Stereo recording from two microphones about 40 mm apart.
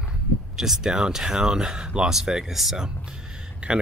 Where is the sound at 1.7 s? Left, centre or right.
Right.